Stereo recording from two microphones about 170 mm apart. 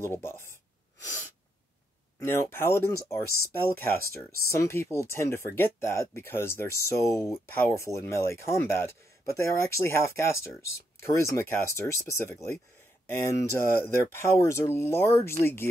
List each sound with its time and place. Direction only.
0.1 s speech: 15° left (ahead or behind)
2.1 s speech: 15° left (ahead or behind)